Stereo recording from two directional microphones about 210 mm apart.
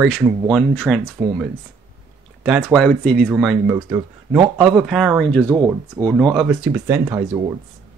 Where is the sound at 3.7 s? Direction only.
15° right (ahead or behind).